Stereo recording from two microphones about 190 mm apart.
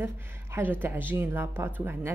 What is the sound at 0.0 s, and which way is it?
A woman's voice, 10° right (ahead or behind).